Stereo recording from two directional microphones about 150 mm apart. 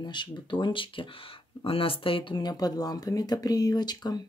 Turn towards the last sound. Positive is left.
turn(degrees=25)  # may be behind; listen again after turning